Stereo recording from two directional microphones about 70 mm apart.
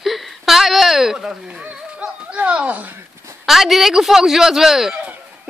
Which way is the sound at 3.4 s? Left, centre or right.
Centre.